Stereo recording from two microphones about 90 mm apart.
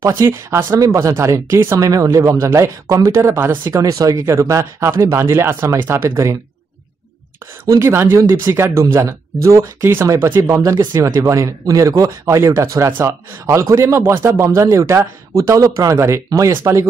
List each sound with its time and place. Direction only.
0.5 s speech: 25° right (ahead or behind)
0.7 s speech: 35° right (ahead or behind)
7.6 s speech: 30° right (ahead or behind)